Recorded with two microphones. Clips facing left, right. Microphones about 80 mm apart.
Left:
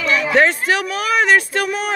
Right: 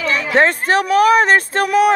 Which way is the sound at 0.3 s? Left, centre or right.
Right.